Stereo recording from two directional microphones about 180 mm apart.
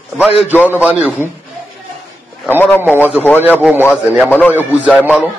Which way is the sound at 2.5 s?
10° left (ahead or behind).